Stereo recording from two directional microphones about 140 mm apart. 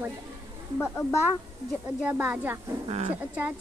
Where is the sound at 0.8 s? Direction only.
20° left (ahead or behind).